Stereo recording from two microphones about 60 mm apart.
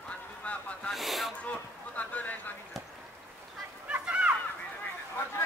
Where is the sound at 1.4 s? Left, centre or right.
Left.